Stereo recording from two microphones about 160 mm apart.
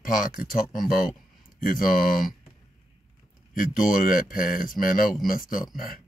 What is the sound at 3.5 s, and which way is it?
Speech, 60° left (ahead or behind).